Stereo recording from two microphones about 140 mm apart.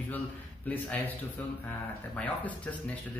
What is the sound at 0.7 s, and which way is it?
Speech, 10° left (ahead or behind).